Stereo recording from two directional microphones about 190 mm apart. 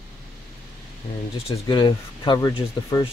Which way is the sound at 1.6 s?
25° left (ahead or behind).